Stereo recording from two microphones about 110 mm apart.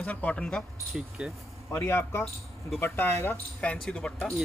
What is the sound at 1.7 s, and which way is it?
Speech, 20° left (ahead or behind).